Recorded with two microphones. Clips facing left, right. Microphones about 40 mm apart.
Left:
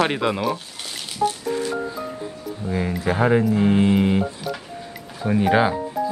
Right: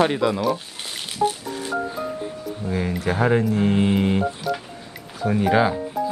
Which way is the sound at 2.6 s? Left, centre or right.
Centre.